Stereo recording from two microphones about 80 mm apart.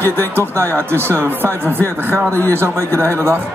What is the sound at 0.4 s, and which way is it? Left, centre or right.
A man's voice, right.